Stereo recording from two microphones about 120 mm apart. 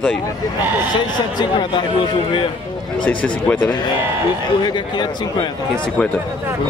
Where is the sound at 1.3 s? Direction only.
40° left (ahead or behind).